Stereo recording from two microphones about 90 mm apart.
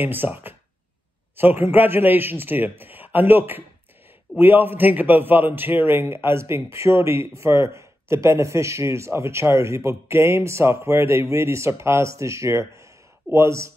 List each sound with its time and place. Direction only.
0.0 s a man's voice: 20° right (ahead or behind)